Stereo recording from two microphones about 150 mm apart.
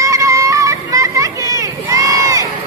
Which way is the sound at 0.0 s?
20° right (ahead or behind).